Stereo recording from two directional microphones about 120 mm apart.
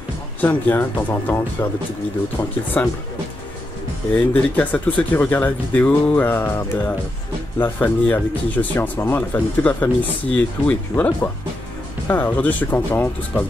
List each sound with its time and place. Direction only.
0.4 s speech: 15° left (ahead or behind)
2.8 s speech: 10° left (ahead or behind)
4.1 s speech: 15° left (ahead or behind)